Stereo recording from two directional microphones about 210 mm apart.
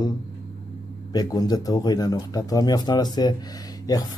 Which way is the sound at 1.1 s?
20° left (ahead or behind).